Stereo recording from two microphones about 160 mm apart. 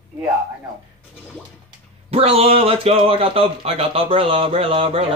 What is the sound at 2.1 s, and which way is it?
Speech, 40° right (ahead or behind).